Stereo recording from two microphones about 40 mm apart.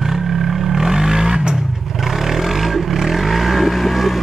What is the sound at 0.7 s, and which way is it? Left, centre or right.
Vehicle, centre.